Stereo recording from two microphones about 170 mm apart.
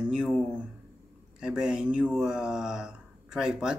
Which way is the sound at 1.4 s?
5° right (ahead or behind).